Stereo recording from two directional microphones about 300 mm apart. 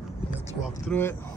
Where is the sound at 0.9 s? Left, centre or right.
Centre.